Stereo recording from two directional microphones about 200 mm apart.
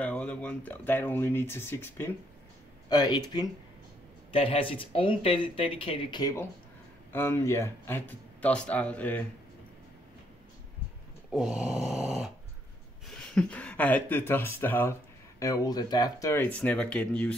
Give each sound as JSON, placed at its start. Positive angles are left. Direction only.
{"t": 0.0, "sound": "speech", "side_deg": 5}
{"t": 11.3, "sound": "a sound", "side_deg": -5}
{"t": 13.1, "sound": "speech", "side_deg": 5}